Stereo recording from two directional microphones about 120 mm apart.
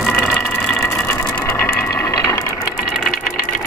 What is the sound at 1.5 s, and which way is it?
Ratchet, 15° left (ahead or behind).